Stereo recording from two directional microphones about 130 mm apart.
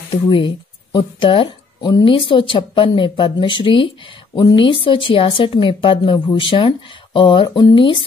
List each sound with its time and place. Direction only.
0.9 s speech: 40° left (ahead or behind)